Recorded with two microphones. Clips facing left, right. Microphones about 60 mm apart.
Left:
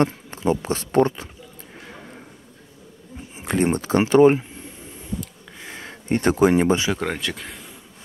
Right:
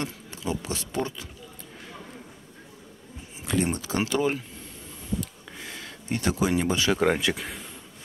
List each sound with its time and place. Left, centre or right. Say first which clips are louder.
0.0 s speech: left 11 dB; left
3.3 s speech: left 6 dB; left
5.7 s speech: left 8 dB; left
6.9 s speech: right 2 dB; centre
7.4 s a sound: even; centre